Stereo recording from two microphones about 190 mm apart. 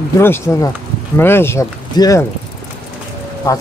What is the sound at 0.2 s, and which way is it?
Speech, 10° left (ahead or behind).